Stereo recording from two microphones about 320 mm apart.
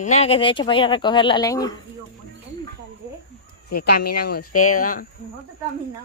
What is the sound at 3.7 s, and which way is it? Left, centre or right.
Speech, left.